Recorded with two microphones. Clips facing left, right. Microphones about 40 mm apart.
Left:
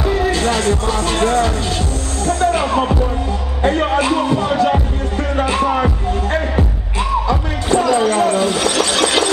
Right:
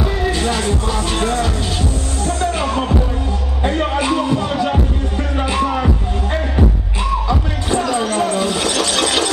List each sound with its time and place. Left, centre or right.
0.0 s music: centre
7.2 s music: centre